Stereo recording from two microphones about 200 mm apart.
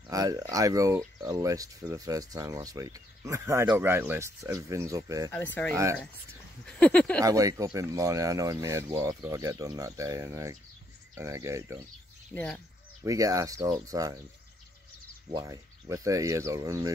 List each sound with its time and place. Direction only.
0.1 s speech: 15° right (ahead or behind)
5.3 s speech: 10° left (ahead or behind)
7.2 s speech: 15° right (ahead or behind)
12.4 s speech: 5° left (ahead or behind)
13.0 s speech: 15° right (ahead or behind)
15.3 s speech: 15° right (ahead or behind)